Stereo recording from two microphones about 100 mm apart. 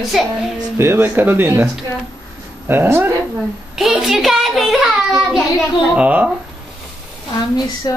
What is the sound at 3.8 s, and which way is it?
A child's voice, 5° right (ahead or behind).